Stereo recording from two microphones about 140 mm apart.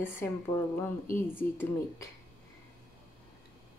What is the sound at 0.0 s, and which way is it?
Speech, 15° left (ahead or behind).